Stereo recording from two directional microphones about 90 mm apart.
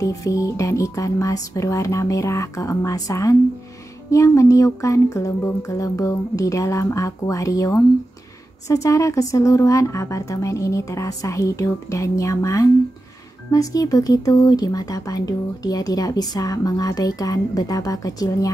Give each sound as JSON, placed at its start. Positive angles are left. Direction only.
{"t": 0.0, "sound": "a woman's voice", "side_deg": 35}